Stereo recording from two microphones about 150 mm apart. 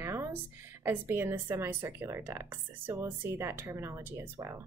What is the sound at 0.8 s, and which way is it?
A woman's voice, 15° right (ahead or behind).